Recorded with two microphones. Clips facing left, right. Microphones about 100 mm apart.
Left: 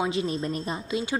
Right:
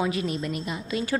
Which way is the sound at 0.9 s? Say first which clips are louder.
Right 2 dB; 20° left (ahead or behind).